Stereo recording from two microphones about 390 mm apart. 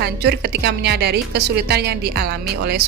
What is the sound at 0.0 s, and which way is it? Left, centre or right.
A woman's voice, right.